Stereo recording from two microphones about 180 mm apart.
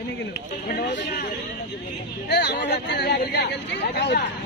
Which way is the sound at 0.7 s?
60° left (ahead or behind).